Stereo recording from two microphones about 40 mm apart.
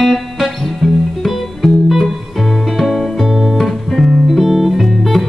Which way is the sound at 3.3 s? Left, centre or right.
Centre.